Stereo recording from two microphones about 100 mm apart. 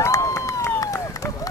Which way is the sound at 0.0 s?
35° left (ahead or behind).